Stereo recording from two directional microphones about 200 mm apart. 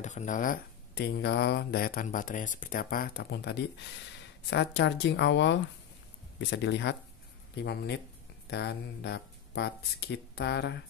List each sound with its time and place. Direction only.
0.0 s speech: 40° left (ahead or behind); by 10.8 s 55° left (ahead or behind)